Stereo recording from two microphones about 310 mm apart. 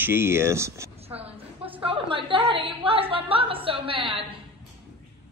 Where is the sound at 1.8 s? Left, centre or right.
Centre.